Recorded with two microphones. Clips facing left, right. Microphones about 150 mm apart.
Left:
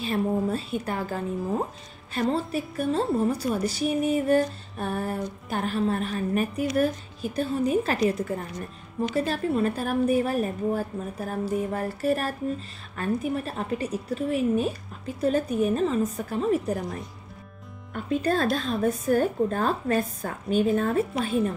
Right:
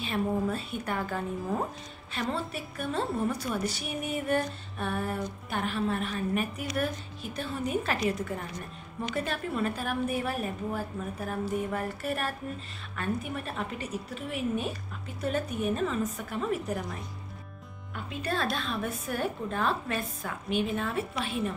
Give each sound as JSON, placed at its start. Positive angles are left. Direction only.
{"t": 0.0, "sound": "a woman's voice", "side_deg": 35}